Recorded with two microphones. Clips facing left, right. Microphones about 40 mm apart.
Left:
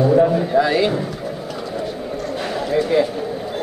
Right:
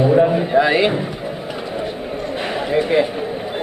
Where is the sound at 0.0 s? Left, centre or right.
Right.